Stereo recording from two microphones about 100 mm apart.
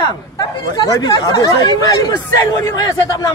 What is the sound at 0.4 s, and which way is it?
Speech, 40° left (ahead or behind).